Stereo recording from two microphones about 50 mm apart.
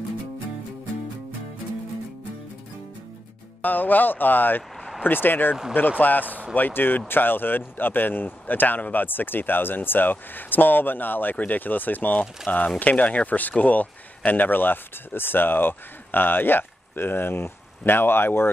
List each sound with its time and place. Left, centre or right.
3.6 s speech: left